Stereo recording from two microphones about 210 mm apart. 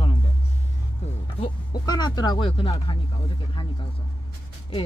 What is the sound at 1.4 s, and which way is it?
Speech, 20° left (ahead or behind).